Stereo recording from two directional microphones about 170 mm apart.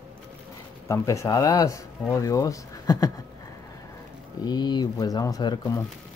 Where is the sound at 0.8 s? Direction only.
15° left (ahead or behind).